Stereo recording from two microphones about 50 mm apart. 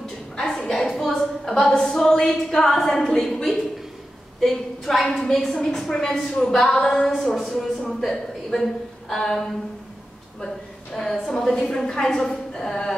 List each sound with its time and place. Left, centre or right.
0.5 s a woman's voice: centre